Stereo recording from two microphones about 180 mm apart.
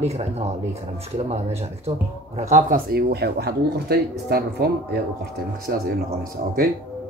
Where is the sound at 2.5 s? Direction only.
55° right (ahead or behind).